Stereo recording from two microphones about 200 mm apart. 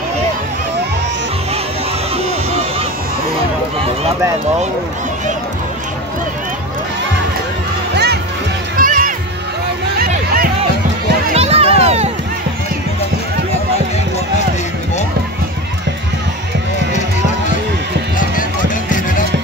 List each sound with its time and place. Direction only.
7.9 s music: 55° right (ahead or behind)
8.7 s music: 45° right (ahead or behind)
11.3 s music: 30° right (ahead or behind)